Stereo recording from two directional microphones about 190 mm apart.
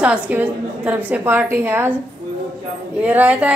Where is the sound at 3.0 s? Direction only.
10° right (ahead or behind).